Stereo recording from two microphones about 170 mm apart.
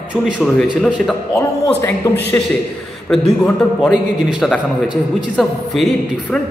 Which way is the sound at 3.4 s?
Centre (ahead or behind).